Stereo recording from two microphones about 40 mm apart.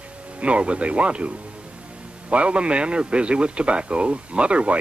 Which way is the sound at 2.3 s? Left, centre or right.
Right.